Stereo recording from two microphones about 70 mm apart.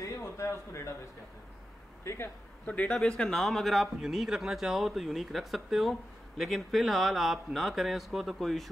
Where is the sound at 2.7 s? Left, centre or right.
Centre.